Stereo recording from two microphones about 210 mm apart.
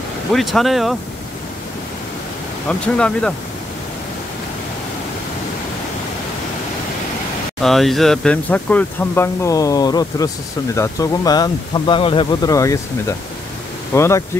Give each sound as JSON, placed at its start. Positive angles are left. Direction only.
{"t": 0.3, "sound": "speech", "side_deg": 0}
{"t": 2.8, "sound": "speech", "side_deg": 5}
{"t": 7.6, "sound": "speech", "side_deg": 0}
{"t": 13.9, "sound": "speech", "side_deg": 15}